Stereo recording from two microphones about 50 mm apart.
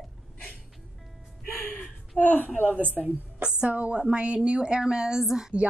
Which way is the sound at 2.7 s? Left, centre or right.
Right.